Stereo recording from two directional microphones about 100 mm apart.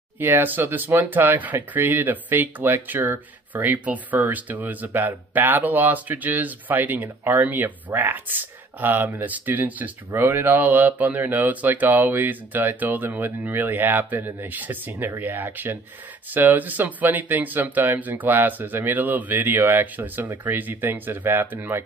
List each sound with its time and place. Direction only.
0.2 s speech: 20° right (ahead or behind)